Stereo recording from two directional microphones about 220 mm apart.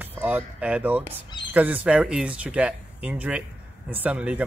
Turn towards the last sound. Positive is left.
turn(degrees=-5)  # may be behind; listen again after turning